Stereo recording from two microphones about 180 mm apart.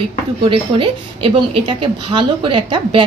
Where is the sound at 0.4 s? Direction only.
30° right (ahead or behind).